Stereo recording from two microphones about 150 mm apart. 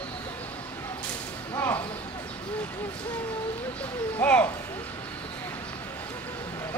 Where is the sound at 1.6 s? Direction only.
15° left (ahead or behind).